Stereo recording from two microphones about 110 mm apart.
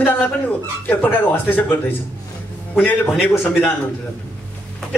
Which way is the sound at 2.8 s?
15° left (ahead or behind).